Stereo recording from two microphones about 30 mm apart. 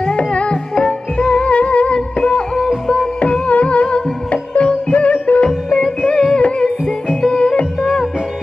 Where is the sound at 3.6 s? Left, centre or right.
Left.